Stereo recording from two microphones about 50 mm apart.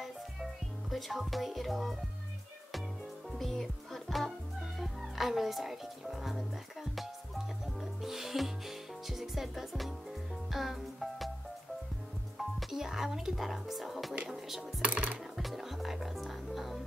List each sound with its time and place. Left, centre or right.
0.8 s speech: centre
3.3 s music: centre
5.0 s speech: centre
6.3 s music: centre
12.4 s music: centre
12.8 s speech: centre
14.8 s a sound: right
15.3 s music: centre